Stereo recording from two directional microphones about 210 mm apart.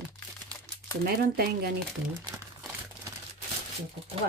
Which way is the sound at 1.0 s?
45° right (ahead or behind).